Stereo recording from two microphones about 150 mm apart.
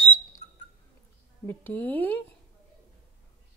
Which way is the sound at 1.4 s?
10° left (ahead or behind).